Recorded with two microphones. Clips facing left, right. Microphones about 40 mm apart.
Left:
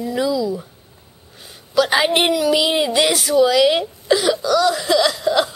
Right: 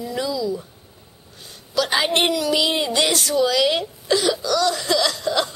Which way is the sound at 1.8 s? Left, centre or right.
Centre.